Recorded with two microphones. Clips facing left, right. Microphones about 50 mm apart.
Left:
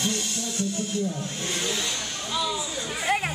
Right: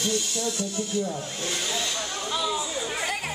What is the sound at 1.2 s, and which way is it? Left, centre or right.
Speech, left.